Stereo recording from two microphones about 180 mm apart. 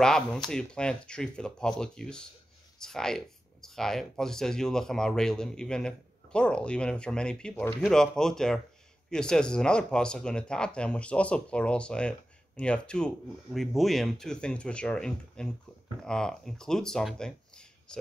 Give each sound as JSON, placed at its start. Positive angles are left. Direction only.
{"t": 0.0, "sound": "speech", "side_deg": 5}